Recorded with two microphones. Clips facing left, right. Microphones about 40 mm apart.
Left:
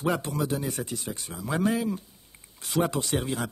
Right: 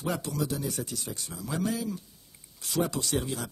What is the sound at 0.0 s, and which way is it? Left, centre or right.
Speech, left.